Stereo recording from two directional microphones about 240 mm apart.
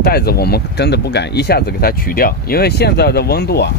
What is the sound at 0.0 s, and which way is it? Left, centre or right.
Speech, left.